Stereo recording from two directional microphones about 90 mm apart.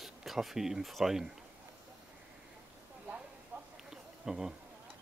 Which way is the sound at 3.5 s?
20° right (ahead or behind).